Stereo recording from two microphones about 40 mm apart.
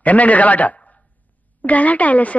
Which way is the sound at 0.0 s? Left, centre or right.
Left.